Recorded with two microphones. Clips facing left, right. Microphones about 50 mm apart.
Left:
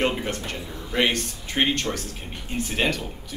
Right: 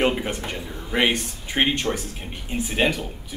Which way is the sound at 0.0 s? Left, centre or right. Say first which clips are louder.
Right 2 dB; centre.